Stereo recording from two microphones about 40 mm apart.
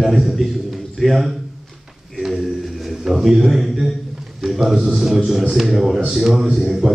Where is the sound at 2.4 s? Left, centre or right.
Centre.